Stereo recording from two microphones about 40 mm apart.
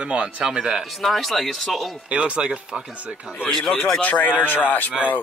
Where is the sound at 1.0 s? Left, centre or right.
Centre.